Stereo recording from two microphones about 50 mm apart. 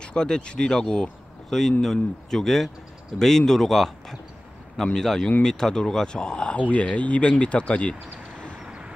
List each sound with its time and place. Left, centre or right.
0.0 s speech: centre